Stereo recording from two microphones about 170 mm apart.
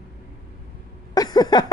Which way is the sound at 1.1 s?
25° left (ahead or behind).